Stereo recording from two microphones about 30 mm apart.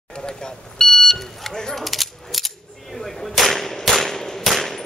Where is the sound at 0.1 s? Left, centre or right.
Left.